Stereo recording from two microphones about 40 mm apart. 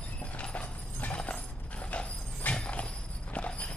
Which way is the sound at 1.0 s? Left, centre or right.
Left.